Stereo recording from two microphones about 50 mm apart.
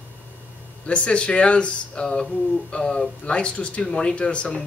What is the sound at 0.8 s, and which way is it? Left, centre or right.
Speech, left.